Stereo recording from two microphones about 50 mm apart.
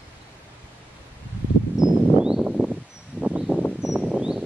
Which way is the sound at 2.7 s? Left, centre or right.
Right.